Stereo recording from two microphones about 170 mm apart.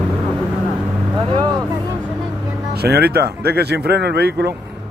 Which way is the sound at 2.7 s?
70° right (ahead or behind).